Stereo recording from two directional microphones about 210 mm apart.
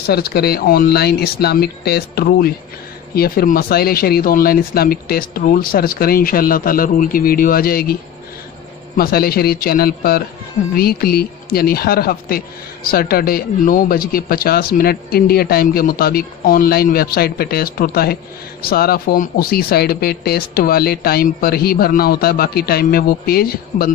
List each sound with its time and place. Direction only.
0.0 s speech: 50° left (ahead or behind)